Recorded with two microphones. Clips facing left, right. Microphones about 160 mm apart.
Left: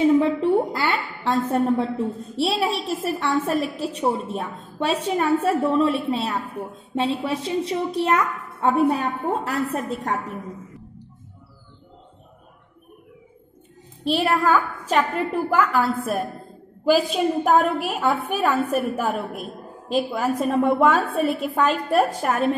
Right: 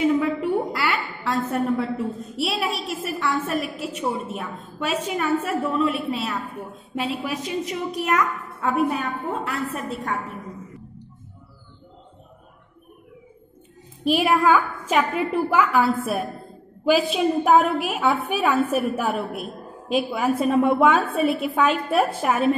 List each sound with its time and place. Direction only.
0.0 s a sound: 30° left (ahead or behind)
1.5 s a woman's voice: 30° left (ahead or behind)
14.0 s a woman's voice: 10° right (ahead or behind)